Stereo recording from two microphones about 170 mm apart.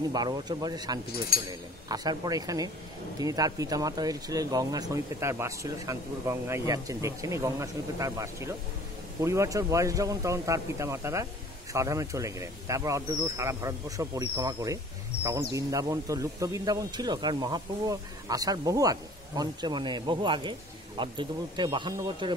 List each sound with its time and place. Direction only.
0.1 s speech: 25° right (ahead or behind)